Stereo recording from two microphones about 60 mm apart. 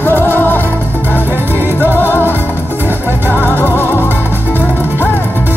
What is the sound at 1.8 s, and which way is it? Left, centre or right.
Music, left.